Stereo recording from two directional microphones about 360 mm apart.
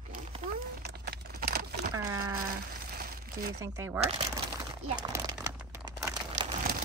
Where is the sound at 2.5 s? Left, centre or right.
Right.